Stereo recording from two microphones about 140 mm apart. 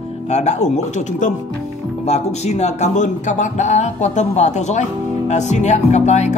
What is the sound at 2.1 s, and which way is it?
Music, 50° left (ahead or behind).